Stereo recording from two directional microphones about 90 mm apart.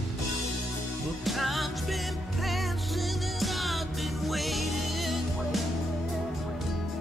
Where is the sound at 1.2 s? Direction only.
Centre (ahead or behind).